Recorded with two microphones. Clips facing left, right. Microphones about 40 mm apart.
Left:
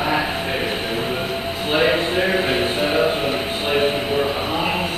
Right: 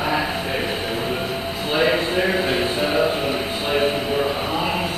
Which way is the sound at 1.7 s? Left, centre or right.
Centre.